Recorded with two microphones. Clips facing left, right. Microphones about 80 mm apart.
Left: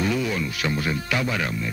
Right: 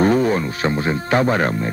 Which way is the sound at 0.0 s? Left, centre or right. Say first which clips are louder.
Right 8 dB; right.